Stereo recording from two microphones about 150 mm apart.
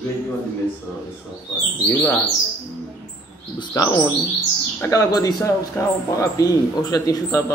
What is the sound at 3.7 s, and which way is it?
Speech, 25° left (ahead or behind).